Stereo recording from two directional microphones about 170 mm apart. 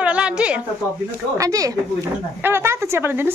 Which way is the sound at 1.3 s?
20° right (ahead or behind).